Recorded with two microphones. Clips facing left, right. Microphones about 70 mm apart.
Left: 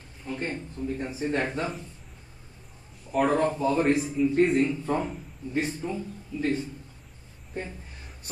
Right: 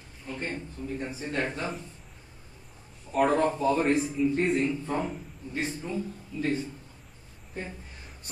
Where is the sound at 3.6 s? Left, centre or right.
Centre.